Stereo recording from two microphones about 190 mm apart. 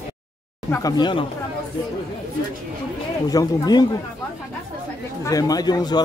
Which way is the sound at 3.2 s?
20° left (ahead or behind).